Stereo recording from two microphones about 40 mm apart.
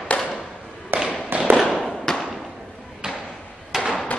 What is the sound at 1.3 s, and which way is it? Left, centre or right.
Fireworks, right.